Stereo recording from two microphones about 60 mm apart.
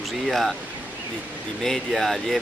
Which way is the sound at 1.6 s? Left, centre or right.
Centre.